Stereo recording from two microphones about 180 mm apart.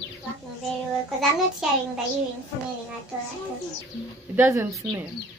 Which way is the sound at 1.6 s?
Centre (ahead or behind).